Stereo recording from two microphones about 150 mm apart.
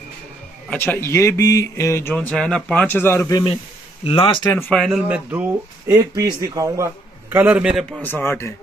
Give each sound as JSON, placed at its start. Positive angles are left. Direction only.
{"t": 0.7, "sound": "speech", "side_deg": 15}
{"t": 4.0, "sound": "speech", "side_deg": 35}
{"t": 4.5, "sound": "speech", "side_deg": 15}
{"t": 4.7, "sound": "a man's voice", "side_deg": 0}
{"t": 5.0, "sound": "speech", "side_deg": -10}
{"t": 7.3, "sound": "a man's voice", "side_deg": -10}
{"t": 8.0, "sound": "speech", "side_deg": 15}